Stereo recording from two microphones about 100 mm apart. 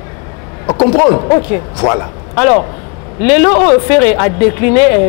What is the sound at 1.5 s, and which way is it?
Speech, centre (ahead or behind).